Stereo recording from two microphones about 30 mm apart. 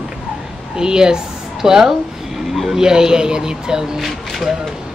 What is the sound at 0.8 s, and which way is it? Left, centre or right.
A woman's voice, right.